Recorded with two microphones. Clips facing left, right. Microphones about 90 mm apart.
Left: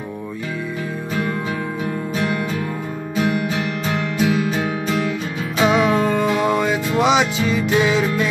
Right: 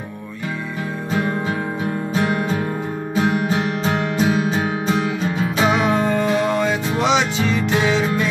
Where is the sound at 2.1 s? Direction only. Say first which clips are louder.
Right 3 dB; 30° right (ahead or behind).